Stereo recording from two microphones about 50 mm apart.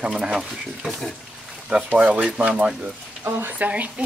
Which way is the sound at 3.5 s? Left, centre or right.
Right.